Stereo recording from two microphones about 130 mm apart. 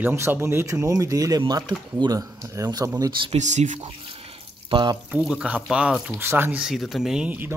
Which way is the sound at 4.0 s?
45° right (ahead or behind).